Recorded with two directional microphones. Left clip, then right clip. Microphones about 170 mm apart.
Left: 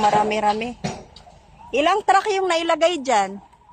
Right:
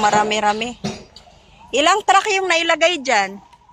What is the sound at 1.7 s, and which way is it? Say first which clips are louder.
A woman's voice: right 3 dB; 5° left (ahead or behind).